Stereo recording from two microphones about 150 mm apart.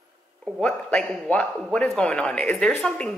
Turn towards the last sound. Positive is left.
turn(degrees=5)  # may be behind; listen again after turning